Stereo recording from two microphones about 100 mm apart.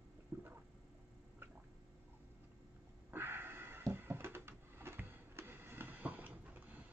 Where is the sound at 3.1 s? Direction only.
20° right (ahead or behind).